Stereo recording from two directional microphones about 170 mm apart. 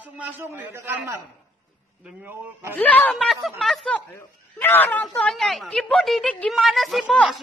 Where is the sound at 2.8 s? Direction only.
10° left (ahead or behind).